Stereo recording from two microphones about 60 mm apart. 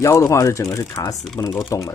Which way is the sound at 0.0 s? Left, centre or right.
Left.